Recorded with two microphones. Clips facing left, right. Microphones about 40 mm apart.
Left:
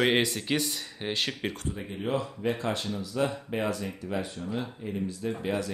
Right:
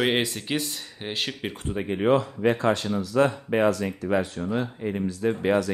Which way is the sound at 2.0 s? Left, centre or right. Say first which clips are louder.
Right 8 dB; right.